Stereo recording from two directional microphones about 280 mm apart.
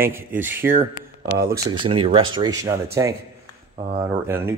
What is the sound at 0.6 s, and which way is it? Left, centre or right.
Speech, right.